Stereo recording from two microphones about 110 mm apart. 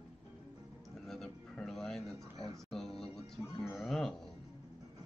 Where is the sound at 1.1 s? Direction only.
5° left (ahead or behind).